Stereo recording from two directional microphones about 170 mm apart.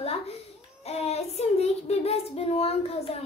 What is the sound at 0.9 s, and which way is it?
Child singing, 40° left (ahead or behind).